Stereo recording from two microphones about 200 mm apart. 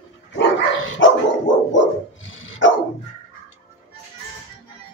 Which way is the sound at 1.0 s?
70° left (ahead or behind).